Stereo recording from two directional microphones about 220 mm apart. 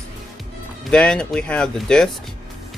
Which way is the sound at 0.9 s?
5° left (ahead or behind).